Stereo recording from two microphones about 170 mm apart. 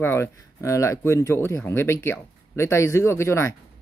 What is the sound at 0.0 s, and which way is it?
Speech, 15° left (ahead or behind).